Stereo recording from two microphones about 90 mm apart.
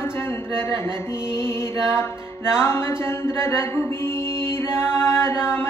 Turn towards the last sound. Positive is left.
turn(degrees=25)  # may be behind; listen again after turning